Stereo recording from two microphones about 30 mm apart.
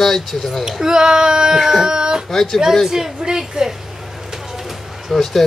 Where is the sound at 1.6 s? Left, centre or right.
Centre.